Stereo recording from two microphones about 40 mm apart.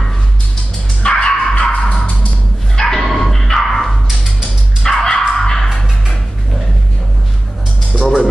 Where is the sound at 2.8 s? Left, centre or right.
Centre.